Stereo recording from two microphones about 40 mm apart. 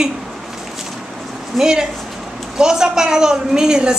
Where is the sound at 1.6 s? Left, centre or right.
Centre.